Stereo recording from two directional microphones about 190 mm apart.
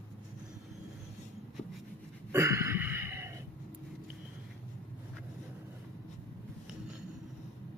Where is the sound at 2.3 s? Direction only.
15° right (ahead or behind).